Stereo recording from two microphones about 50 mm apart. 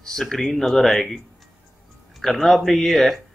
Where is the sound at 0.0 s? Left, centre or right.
Centre.